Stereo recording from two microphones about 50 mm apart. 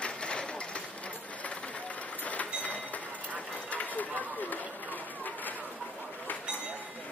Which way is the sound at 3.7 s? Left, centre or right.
Left.